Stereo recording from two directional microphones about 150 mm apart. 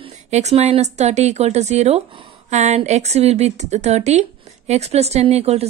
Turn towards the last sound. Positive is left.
turn(degrees=-45)  # may be behind; listen again after turning